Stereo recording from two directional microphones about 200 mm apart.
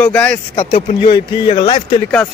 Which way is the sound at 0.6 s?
25° left (ahead or behind).